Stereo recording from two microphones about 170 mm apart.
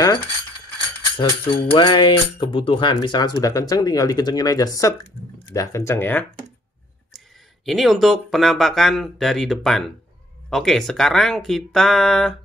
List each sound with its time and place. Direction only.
0.0 s a sound: 20° left (ahead or behind)
1.1 s speech: 30° left (ahead or behind); by 6.2 s 10° left (ahead or behind)
7.6 s speech: centre (ahead or behind)